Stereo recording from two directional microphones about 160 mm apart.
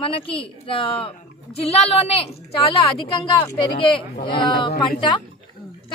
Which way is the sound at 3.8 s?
30° left (ahead or behind).